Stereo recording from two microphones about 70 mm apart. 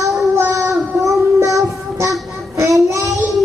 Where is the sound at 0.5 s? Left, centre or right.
Right.